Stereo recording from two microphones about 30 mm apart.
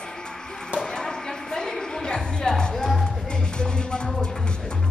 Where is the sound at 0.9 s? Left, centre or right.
Left.